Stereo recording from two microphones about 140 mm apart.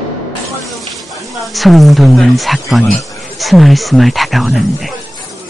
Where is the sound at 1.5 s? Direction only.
Centre (ahead or behind).